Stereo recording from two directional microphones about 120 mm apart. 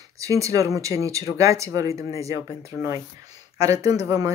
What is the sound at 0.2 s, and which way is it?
Speech, 30° right (ahead or behind).